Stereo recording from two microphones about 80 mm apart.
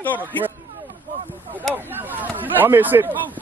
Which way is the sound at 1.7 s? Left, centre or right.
Right.